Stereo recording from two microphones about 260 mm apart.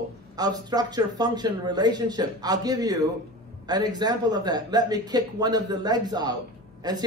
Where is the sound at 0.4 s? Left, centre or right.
Centre.